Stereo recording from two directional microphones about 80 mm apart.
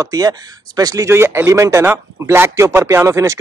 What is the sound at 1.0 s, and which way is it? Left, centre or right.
Speech, right.